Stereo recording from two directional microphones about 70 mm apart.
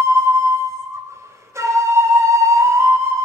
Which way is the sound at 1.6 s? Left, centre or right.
Right.